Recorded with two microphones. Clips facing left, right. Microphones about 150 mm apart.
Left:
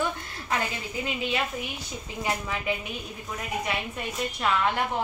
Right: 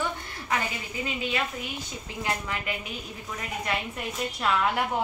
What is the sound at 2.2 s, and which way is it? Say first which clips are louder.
Speech: left 1 dB; 15° left (ahead or behind).